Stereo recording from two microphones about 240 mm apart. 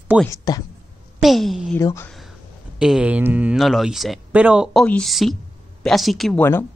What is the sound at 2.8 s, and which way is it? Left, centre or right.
Speech, centre.